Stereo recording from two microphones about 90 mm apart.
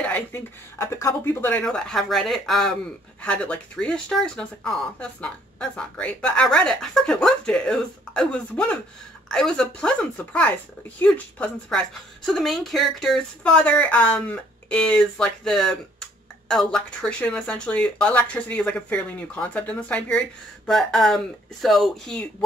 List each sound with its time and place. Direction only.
0.3 s speech: 35° left (ahead or behind)
1.5 s speech: 10° left (ahead or behind)
3.2 s speech: 15° left (ahead or behind)
13.4 s speech: 15° left (ahead or behind)